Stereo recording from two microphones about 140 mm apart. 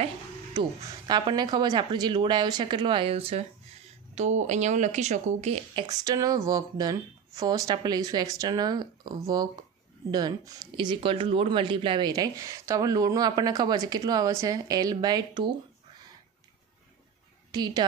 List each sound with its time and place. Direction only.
0.6 s speech: 30° right (ahead or behind)
4.1 s speech: 55° right (ahead or behind)
5.9 s speech: 25° right (ahead or behind)
17.5 s a woman's voice: 30° right (ahead or behind)